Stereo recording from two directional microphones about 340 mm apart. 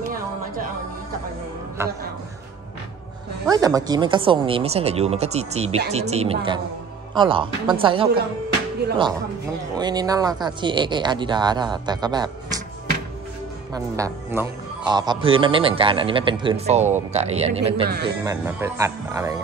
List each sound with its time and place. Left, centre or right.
1.8 s a man's voice: centre
3.4 s a man's voice: centre
9.8 s a man's voice: centre
13.7 s a man's voice: centre
17.8 s a woman's voice: right
18.2 s a man's voice: centre